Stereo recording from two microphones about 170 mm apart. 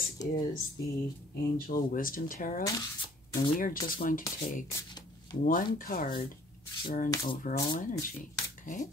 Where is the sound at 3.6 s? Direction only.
55° left (ahead or behind).